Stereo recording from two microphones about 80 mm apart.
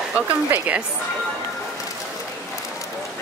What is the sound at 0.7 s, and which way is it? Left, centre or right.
Speech, centre.